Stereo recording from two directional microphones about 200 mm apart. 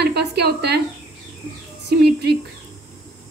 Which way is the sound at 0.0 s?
55° right (ahead or behind).